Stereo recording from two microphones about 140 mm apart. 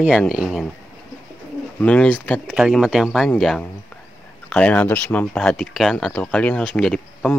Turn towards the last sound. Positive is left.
turn(degrees=5)  # may be behind; listen again after turning